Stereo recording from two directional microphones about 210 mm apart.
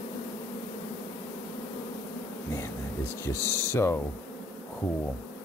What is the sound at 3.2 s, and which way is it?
Speech, 10° left (ahead or behind).